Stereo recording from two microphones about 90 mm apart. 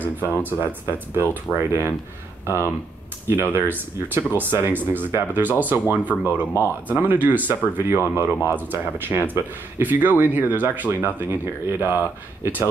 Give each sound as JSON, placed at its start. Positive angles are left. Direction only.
{"t": 0.2, "sound": "speech", "side_deg": -20}